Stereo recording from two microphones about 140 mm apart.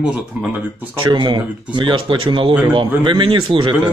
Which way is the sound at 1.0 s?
35° right (ahead or behind).